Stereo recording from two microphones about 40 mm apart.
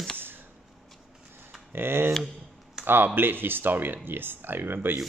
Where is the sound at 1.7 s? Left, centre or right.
Right.